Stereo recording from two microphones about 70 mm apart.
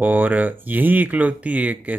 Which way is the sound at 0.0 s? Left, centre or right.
Right.